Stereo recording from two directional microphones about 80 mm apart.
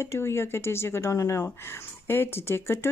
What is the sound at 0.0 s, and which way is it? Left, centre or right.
Speech, left.